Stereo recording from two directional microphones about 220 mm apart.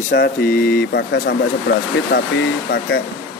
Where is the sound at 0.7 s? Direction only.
50° left (ahead or behind).